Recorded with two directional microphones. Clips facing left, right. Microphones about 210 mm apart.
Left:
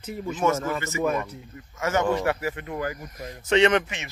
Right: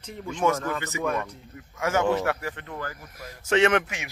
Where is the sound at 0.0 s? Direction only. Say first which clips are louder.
Left 1 dB; 5° left (ahead or behind).